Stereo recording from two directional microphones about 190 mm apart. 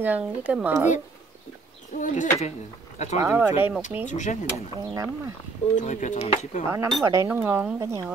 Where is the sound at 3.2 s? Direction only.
15° right (ahead or behind).